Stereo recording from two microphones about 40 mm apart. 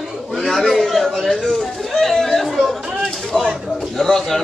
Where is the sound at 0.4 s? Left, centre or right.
Centre.